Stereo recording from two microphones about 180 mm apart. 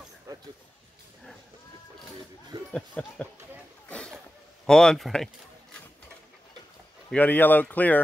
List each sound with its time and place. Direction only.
0.3 s speech: 15° right (ahead or behind)
2.7 s speech: 5° left (ahead or behind)
3.9 s a sound: 5° left (ahead or behind)
4.6 s speech: 5° left (ahead or behind)
7.1 s speech: 10° left (ahead or behind)